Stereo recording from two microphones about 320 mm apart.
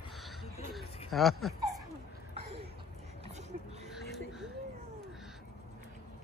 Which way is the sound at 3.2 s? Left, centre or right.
Right.